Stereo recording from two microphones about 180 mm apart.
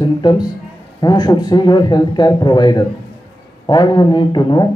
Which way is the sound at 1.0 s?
25° left (ahead or behind).